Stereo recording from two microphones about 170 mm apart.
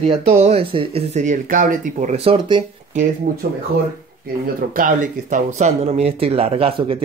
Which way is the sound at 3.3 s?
55° right (ahead or behind).